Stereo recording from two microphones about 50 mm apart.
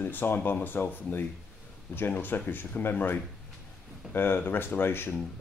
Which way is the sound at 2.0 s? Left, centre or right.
Left.